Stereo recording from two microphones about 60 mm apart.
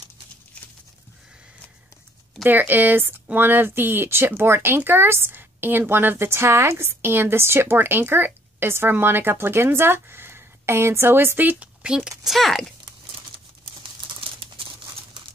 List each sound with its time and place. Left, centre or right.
2.4 s a woman's voice: right
12.3 s speech: centre